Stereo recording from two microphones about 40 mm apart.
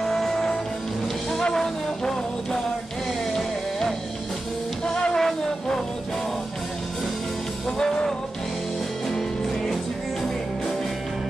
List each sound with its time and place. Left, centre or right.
0.0 s music: centre
4.8 s music: centre
7.8 s music: left
9.1 s music: centre